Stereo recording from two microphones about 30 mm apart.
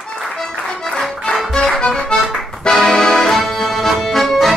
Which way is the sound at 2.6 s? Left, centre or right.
Left.